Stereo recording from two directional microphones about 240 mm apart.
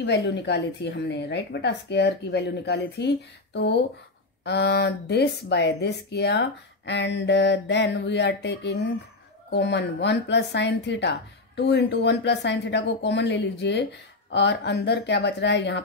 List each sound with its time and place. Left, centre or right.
0.0 s a woman's voice: left